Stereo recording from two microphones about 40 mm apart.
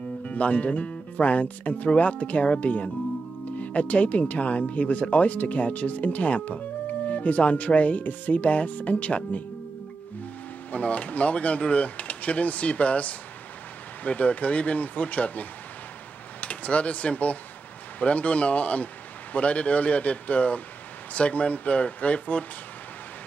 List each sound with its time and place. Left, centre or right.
0.2 s speech: left
10.7 s speech: left